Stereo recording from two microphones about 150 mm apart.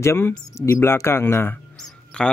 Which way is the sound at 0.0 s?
20° left (ahead or behind).